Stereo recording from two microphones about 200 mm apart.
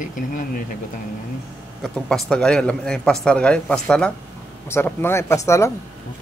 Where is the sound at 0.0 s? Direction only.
40° left (ahead or behind).